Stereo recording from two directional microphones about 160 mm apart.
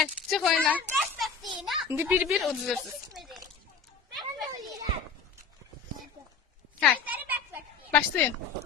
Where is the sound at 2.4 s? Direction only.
Centre (ahead or behind).